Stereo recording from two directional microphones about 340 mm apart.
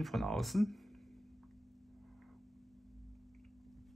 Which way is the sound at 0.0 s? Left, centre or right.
Centre.